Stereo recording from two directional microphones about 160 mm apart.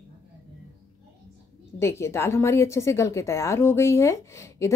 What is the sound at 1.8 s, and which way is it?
Speech, 15° left (ahead or behind).